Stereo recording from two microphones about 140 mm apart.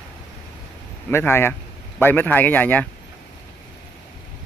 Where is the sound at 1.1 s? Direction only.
15° left (ahead or behind).